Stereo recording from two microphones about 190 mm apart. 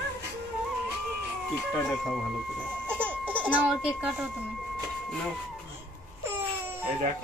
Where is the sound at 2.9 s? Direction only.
10° right (ahead or behind).